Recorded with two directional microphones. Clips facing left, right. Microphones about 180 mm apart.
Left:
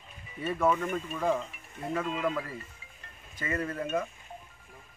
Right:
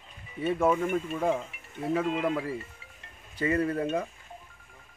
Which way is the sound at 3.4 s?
30° right (ahead or behind).